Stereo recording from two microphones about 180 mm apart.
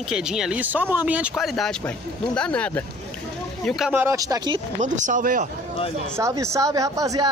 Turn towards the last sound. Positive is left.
turn(degrees=-20)  # may be behind; listen again after turning